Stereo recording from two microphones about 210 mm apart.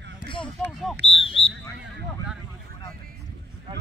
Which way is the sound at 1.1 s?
25° left (ahead or behind).